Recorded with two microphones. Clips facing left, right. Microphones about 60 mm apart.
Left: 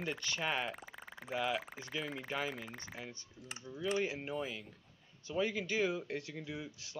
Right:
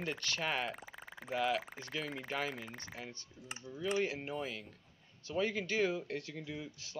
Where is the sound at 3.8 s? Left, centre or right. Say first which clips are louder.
Right 1 dB; centre.